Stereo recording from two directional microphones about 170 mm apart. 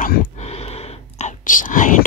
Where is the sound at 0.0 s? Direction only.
40° left (ahead or behind).